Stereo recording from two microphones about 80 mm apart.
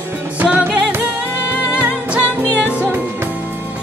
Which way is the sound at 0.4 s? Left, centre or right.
Centre.